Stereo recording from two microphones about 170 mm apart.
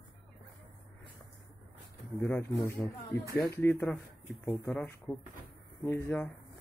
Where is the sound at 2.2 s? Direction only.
15° left (ahead or behind).